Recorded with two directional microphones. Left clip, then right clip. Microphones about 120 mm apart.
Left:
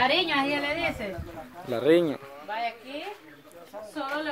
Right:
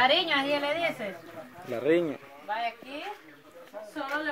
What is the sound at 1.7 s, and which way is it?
Speech, 30° left (ahead or behind).